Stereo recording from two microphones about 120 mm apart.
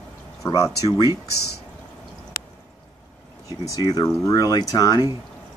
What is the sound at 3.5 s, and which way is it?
Speech, 25° right (ahead or behind).